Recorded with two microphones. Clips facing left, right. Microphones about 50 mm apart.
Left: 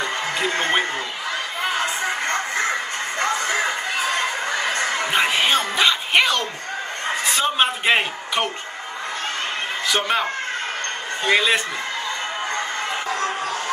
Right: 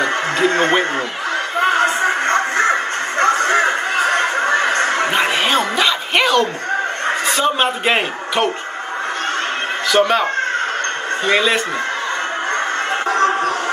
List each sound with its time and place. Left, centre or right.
0.5 s a sound: right
1.6 s music: right
5.1 s music: centre
7.2 s a man's voice: centre
9.8 s speech: centre
11.2 s speech: centre